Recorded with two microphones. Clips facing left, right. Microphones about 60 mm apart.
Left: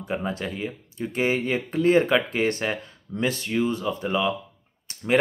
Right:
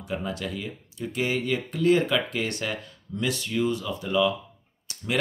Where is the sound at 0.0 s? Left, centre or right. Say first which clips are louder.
Left 3 dB; left.